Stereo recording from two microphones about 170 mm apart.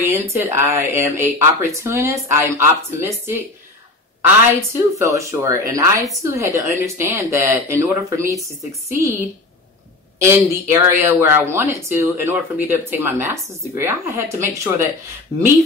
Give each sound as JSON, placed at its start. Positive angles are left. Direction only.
{"t": 0.1, "sound": "speech", "side_deg": -15}
{"t": 4.6, "sound": "speech", "side_deg": -15}
{"t": 10.1, "sound": "speech", "side_deg": -15}